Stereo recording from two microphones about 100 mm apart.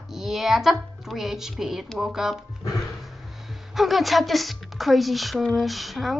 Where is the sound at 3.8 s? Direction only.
Centre (ahead or behind).